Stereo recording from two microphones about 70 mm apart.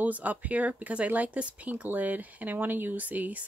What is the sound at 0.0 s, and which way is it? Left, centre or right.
Speech, right.